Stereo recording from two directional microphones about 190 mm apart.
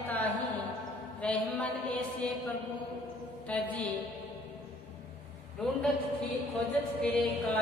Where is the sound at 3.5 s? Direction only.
5° left (ahead or behind).